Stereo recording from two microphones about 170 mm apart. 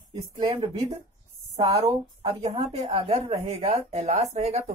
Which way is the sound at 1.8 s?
35° right (ahead or behind).